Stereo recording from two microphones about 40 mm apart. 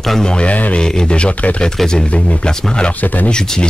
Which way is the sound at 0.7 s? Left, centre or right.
Centre.